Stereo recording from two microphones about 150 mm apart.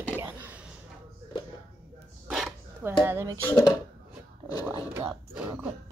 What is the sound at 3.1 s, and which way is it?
Speech, 15° right (ahead or behind).